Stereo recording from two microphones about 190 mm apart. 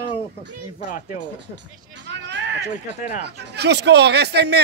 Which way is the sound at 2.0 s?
70° right (ahead or behind).